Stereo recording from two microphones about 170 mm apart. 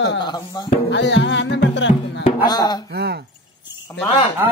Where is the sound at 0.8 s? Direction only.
90° left.